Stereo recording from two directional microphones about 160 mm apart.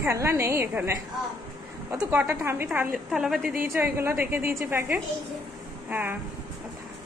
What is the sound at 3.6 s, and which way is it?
Speech, 15° right (ahead or behind).